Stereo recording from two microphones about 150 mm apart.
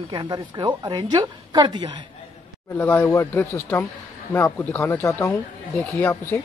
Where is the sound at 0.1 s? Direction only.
30° right (ahead or behind).